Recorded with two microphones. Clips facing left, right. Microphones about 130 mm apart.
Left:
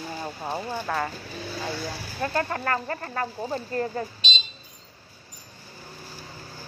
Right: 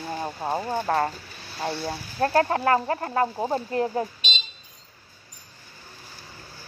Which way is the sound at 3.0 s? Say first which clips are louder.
Right 6 dB; 30° right (ahead or behind).